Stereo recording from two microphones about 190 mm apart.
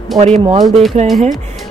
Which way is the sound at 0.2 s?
35° right (ahead or behind).